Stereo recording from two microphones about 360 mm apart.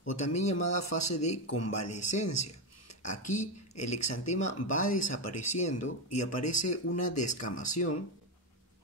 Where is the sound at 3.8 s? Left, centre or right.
Left.